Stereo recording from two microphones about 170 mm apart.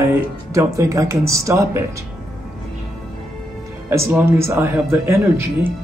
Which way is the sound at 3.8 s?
15° right (ahead or behind).